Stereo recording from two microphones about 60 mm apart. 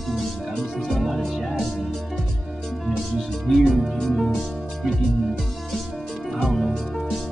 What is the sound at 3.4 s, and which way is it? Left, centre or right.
Music, centre.